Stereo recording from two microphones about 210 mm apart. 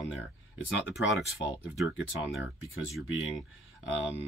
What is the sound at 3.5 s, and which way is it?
Speech, 60° left (ahead or behind).